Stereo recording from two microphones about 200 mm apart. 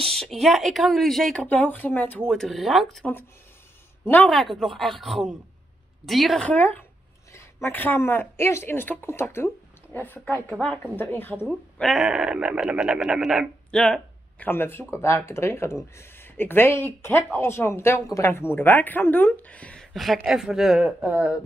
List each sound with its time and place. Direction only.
0.0 s speech: centre (ahead or behind)
11.3 s speech: centre (ahead or behind)